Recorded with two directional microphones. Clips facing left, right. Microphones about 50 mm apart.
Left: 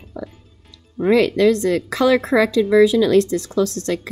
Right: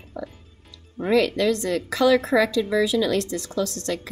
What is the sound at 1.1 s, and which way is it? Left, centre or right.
A woman's voice, left.